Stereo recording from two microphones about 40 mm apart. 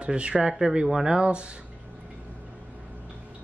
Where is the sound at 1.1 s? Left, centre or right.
Right.